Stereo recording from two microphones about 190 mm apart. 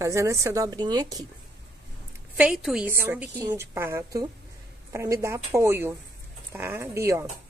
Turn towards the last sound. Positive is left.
turn(degrees=-15)  # may be behind; listen again after turning